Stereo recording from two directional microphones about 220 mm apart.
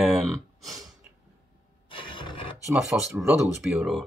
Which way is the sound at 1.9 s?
25° left (ahead or behind).